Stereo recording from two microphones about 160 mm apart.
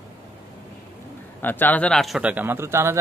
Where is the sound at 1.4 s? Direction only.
10° left (ahead or behind); by 3.0 s 15° right (ahead or behind).